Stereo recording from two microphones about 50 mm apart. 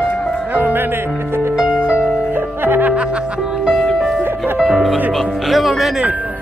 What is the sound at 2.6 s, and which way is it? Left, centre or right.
Music, right.